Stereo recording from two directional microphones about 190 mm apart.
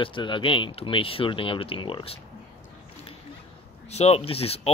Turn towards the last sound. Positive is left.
turn(degrees=30)  # may be behind; listen again after turning